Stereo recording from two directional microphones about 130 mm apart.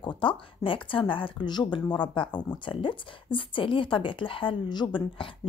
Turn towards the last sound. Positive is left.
turn(degrees=35)  # may be behind; listen again after turning